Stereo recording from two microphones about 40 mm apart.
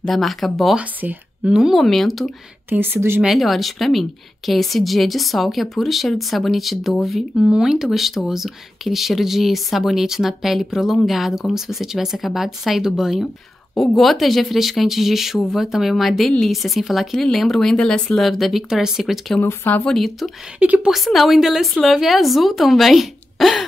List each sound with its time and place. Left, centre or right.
0.0 s a woman's voice: centre
1.0 s a woman's voice: right
1.4 s speech: centre
1.8 s a woman's voice: centre
2.8 s a woman's voice: right
3.3 s a woman's voice: centre
13.7 s a woman's voice: centre
17.7 s speech: left
18.0 s speech: centre
18.7 s speech: centre
19.9 s a woman's voice: centre
20.5 s a woman's voice: right
20.9 s a woman's voice: centre